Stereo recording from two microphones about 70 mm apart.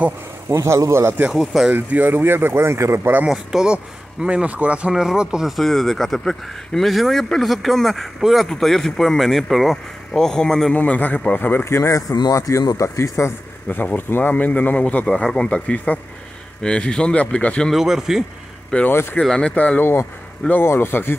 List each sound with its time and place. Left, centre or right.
0.5 s speech: right
1.3 s speech: centre
1.7 s speech: right
3.3 s a man's voice: centre
5.6 s speech: centre
10.7 s a man's voice: left
11.6 s speech: left
13.7 s a man's voice: left
17.6 s speech: centre
18.9 s speech: left
19.2 s a man's voice: centre
19.8 s speech: left